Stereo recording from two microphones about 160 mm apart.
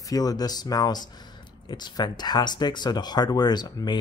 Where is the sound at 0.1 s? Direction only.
25° left (ahead or behind).